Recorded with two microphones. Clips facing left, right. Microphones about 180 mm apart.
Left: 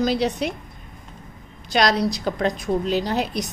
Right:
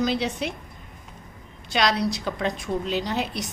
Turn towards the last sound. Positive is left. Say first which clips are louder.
# left 4 dB
turn(degrees=40)  # may be behind; listen again after turning